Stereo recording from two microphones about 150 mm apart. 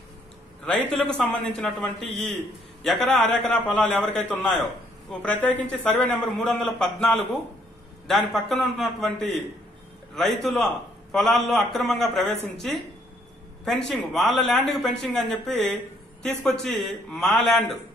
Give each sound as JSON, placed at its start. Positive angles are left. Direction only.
{"t": 0.7, "sound": "a man's voice", "side_deg": 5}
{"t": 13.7, "sound": "a man's voice", "side_deg": 0}